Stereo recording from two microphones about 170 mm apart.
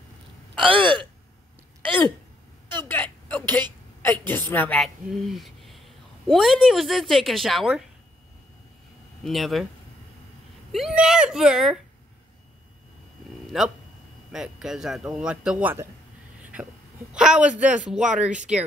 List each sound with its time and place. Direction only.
0.7 s gasp: 30° right (ahead or behind)
2.8 s a sound: 10° left (ahead or behind)
4.3 s speech: 10° left (ahead or behind)
9.2 s speech: centre (ahead or behind)
10.7 s speech: centre (ahead or behind)
13.5 s speech: centre (ahead or behind)
17.1 s speech: 5° right (ahead or behind)